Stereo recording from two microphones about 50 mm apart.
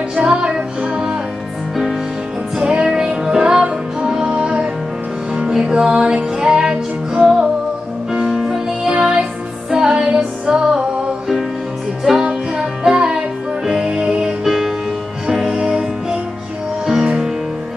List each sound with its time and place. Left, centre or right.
0.1 s music: centre
2.6 s music: centre
12.0 s music: centre
14.4 s music: centre